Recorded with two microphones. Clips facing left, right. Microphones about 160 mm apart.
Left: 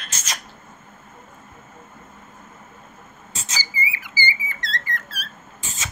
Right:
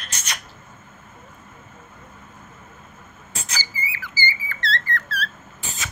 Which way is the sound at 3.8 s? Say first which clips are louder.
Left 3 dB; 15° left (ahead or behind).